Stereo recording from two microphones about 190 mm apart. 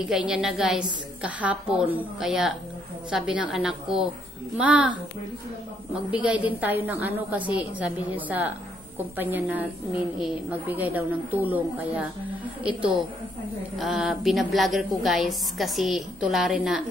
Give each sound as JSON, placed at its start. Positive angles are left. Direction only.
{"t": 0.0, "sound": "a woman's voice", "side_deg": -5}
{"t": 6.1, "sound": "a woman's voice", "side_deg": -5}
{"t": 10.7, "sound": "a woman's voice", "side_deg": -10}
{"t": 13.7, "sound": "a woman's voice", "side_deg": 0}